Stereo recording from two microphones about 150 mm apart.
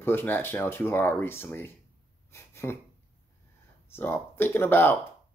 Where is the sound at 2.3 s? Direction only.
15° left (ahead or behind).